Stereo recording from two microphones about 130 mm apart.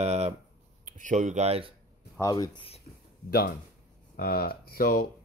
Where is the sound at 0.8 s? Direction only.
75° right (ahead or behind); by 1.7 s 55° right (ahead or behind).